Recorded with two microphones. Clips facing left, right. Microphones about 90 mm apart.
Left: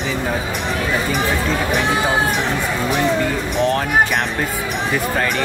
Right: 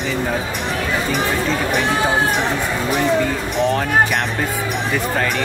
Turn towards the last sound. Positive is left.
turn(degrees=0)  # may be behind; listen again after turning